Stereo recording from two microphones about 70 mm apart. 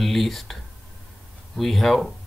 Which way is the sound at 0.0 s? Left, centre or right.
Centre.